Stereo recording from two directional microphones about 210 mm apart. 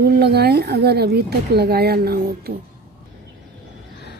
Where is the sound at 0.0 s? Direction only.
50° right (ahead or behind).